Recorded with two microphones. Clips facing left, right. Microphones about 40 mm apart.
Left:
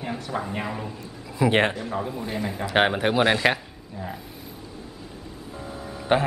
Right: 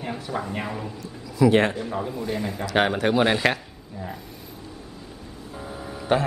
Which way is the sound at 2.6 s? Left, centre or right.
Left.